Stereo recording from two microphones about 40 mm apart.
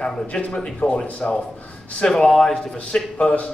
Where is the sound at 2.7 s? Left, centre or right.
Left.